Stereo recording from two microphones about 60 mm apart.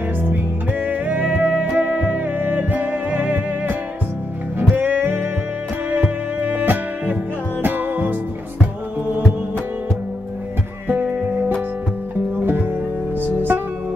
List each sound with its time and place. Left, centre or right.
0.2 s music: right
10.9 s music: right
13.2 s music: right